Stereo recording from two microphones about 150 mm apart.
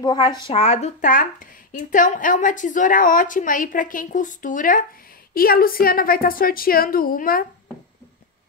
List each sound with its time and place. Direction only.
0.0 s speech: 25° left (ahead or behind)
0.5 s a woman's voice: 45° left (ahead or behind); by 4.8 s 60° left (ahead or behind)
5.3 s a woman's voice: 85° left